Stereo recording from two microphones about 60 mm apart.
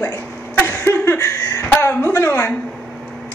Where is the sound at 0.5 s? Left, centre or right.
Left.